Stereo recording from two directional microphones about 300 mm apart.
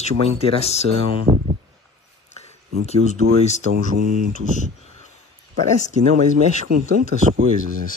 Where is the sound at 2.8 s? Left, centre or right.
Left.